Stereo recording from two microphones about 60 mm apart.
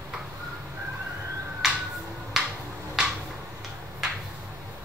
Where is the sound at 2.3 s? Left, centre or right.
Centre.